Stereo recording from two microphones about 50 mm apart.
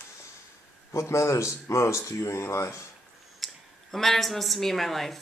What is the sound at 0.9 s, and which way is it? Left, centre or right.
Speech, left.